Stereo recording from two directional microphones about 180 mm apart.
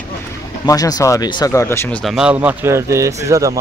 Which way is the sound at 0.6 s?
20° left (ahead or behind).